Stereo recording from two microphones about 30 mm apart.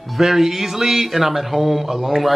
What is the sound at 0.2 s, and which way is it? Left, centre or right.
A man's voice, centre.